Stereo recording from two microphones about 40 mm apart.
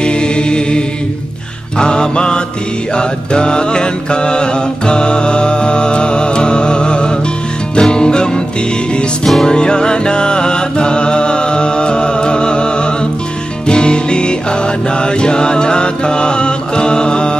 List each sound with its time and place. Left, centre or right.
0.0 s mantra: left
7.7 s music: left
9.2 s music: centre
9.5 s music: left